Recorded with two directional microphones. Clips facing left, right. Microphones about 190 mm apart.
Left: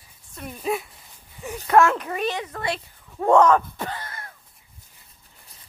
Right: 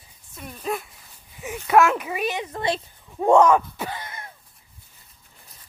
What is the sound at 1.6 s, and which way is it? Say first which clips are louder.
Speech: even; 10° right (ahead or behind).